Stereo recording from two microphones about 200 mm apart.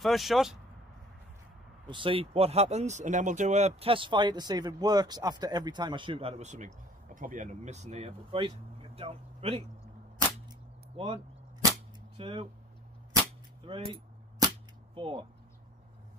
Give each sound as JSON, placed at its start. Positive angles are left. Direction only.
{"t": 0.0, "sound": "speech", "side_deg": 0}
{"t": 1.9, "sound": "speech", "side_deg": -25}
{"t": 11.0, "sound": "speech", "side_deg": -30}
{"t": 12.2, "sound": "speech", "side_deg": -25}
{"t": 13.7, "sound": "speech", "side_deg": -25}
{"t": 15.0, "sound": "speech", "side_deg": -25}